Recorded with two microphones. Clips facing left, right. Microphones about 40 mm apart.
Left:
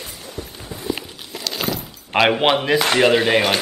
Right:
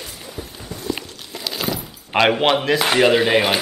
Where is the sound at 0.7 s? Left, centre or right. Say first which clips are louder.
Even; centre.